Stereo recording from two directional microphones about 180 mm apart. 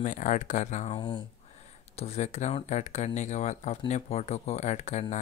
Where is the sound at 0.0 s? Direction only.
45° left (ahead or behind).